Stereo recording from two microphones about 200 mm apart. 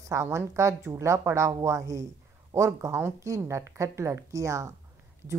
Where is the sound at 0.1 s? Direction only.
15° right (ahead or behind).